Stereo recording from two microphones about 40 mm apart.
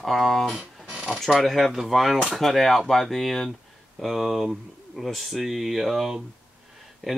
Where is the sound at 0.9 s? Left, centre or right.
Right.